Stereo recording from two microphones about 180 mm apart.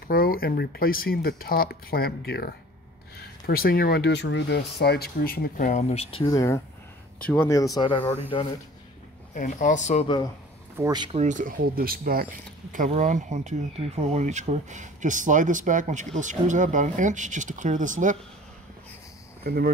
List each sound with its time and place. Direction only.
0.1 s speech: 55° left (ahead or behind); by 6.2 s 35° left (ahead or behind)
6.2 s speech: 20° left (ahead or behind)
9.3 s speech: 45° left (ahead or behind)
10.8 s speech: 25° right (ahead or behind)
11.1 s speech: 45° right (ahead or behind)
19.4 s speech: 60° right (ahead or behind)